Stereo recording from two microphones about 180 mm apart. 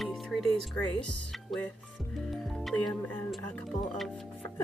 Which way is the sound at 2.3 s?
Centre (ahead or behind).